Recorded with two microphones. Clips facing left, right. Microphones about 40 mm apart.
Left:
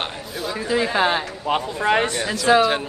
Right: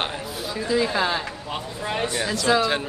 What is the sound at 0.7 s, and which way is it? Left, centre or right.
Speech, left.